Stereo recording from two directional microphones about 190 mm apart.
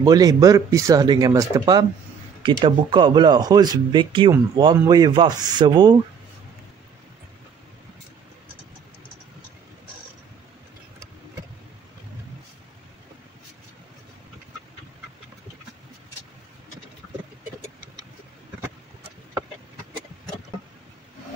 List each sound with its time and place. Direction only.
0.0 s speech: 20° right (ahead or behind)